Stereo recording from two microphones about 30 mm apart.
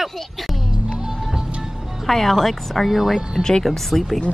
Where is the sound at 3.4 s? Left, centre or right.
Left.